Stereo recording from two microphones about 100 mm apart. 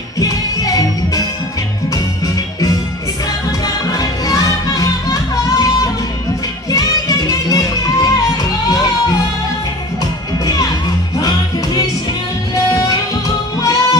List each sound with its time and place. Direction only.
0.2 s music: 40° left (ahead or behind)
6.7 s music: 40° left (ahead or behind)
11.1 s music: 40° left (ahead or behind)